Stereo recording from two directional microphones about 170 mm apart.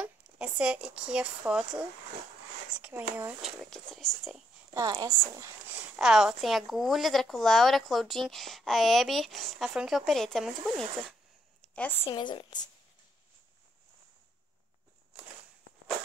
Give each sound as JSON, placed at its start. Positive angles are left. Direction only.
{"t": 0.0, "sound": "speech", "side_deg": -5}
{"t": 3.7, "sound": "a woman's voice", "side_deg": 0}
{"t": 4.7, "sound": "a woman's voice", "side_deg": -20}
{"t": 5.7, "sound": "a woman's voice", "side_deg": -5}
{"t": 12.2, "sound": "speech", "side_deg": 25}